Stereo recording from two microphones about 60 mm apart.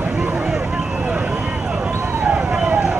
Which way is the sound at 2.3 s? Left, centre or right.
Centre.